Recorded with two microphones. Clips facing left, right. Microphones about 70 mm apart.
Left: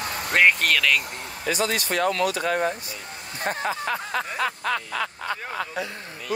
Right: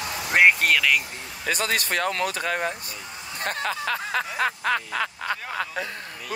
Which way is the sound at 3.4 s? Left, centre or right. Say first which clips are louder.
Left 1 dB; right.